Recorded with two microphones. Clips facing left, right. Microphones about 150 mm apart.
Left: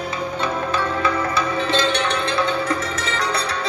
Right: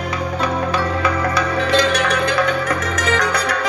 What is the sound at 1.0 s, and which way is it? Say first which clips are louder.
Music: right 2 dB; 25° left (ahead or behind).